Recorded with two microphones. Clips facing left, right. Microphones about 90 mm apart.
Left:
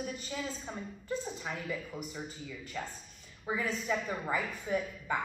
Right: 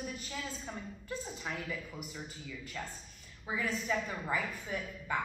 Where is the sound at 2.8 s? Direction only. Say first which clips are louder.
Left 3 dB; 15° left (ahead or behind).